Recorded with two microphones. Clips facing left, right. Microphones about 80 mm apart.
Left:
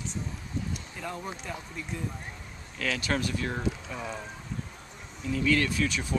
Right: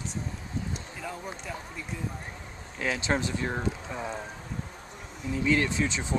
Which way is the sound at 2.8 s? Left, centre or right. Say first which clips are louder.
Right 1 dB; right.